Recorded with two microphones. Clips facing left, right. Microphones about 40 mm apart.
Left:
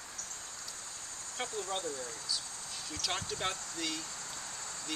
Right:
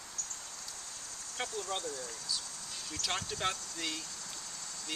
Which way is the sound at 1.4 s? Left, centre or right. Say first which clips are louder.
Left 1 dB; left.